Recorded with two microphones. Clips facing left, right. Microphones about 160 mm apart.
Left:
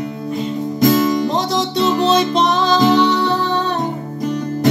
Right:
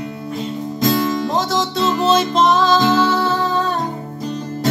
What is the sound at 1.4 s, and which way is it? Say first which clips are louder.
Music: left 1 dB; centre (ahead or behind).